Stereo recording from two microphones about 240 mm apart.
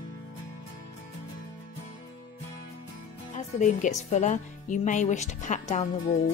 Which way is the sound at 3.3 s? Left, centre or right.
Left.